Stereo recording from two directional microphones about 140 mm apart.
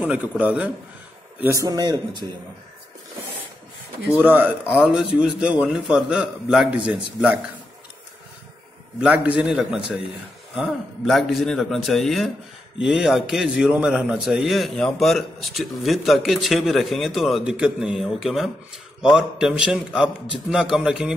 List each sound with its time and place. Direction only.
0.0 s a man's voice: 10° right (ahead or behind)
1.4 s speech: 20° right (ahead or behind)
4.2 s a man's voice: 15° right (ahead or behind)
9.0 s a man's voice: 10° right (ahead or behind)